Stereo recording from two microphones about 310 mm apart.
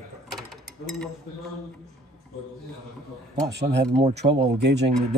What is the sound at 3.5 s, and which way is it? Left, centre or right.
Speech, right.